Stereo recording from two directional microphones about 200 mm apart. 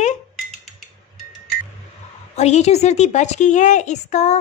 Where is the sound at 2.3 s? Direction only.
35° left (ahead or behind).